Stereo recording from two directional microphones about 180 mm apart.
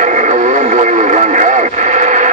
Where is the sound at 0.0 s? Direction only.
40° right (ahead or behind).